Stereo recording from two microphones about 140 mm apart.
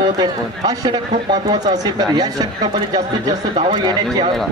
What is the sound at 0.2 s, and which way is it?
A man's voice, 30° right (ahead or behind).